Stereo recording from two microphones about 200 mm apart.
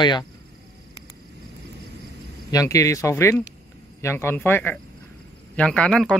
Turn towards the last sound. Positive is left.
turn(degrees=5)  # may be behind; listen again after turning